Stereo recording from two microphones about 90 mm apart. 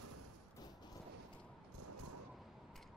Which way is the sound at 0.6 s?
45° left (ahead or behind).